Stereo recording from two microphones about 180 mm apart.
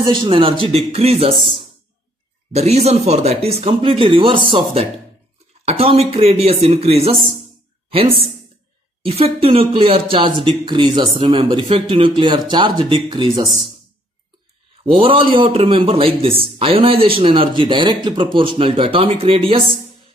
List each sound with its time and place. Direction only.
0.0 s a man's voice: 25° right (ahead or behind)
9.0 s speech: 30° right (ahead or behind)
14.8 s a man's voice: 30° right (ahead or behind)